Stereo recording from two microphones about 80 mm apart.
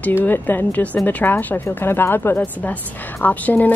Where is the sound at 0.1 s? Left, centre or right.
Left.